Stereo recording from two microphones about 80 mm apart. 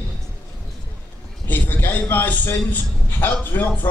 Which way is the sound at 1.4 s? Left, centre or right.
Left.